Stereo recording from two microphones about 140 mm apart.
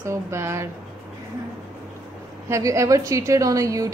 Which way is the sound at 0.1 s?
20° right (ahead or behind).